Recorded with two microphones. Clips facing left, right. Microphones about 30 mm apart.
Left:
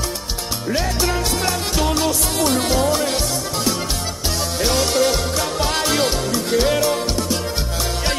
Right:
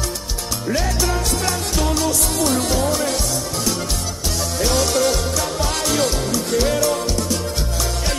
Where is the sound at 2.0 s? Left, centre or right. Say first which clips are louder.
Left 1 dB; centre.